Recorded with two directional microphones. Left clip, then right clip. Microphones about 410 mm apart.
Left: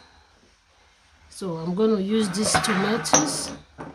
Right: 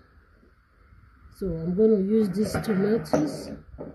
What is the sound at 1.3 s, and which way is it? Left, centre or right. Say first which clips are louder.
Speech: right 1 dB; left.